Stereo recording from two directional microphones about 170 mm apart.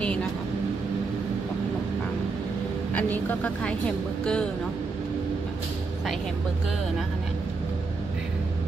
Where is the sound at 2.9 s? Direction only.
10° left (ahead or behind).